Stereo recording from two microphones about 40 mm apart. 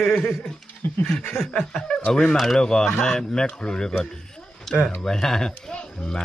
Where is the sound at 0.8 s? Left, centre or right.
Left.